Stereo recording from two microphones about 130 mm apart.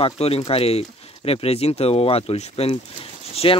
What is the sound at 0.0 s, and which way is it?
Speech, 50° left (ahead or behind).